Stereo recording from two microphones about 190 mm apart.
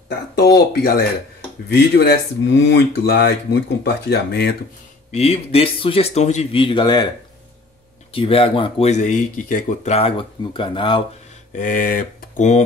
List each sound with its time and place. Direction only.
0.4 s speech: 55° left (ahead or behind)
5.1 s speech: 35° left (ahead or behind)
8.1 s speech: 30° left (ahead or behind)
9.9 s speech: 30° left (ahead or behind)
11.5 s speech: 45° left (ahead or behind)